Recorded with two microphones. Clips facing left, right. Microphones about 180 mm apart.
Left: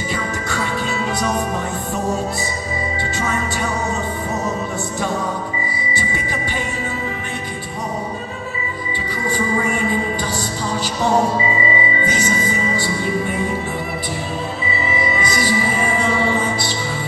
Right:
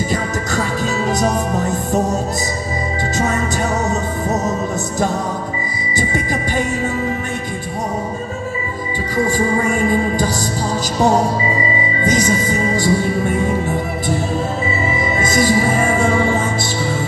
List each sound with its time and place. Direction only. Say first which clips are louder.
1.0 s music: right 4 dB; 40° right (ahead or behind)
9.6 s music: right 4 dB; 45° right (ahead or behind)
12.0 s music: right 4 dB; 40° right (ahead or behind)
14.7 s music: right 2 dB; 45° right (ahead or behind)